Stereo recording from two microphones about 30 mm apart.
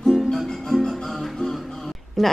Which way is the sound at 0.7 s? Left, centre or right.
Left.